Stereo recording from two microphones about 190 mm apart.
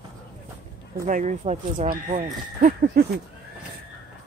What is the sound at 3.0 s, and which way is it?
Speech, 55° right (ahead or behind).